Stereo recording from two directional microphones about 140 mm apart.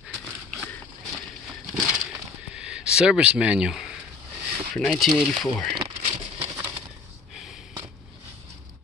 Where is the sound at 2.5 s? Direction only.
5° right (ahead or behind).